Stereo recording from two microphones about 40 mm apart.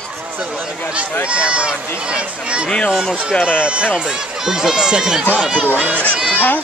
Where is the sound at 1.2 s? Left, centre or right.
Right.